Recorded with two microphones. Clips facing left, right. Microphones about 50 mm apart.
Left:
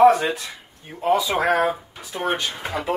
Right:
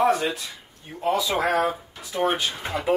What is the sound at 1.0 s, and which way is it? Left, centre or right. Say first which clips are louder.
Speech: left 3 dB; centre.